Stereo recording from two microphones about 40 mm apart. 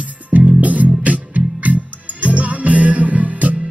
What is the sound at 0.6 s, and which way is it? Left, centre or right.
Music, right.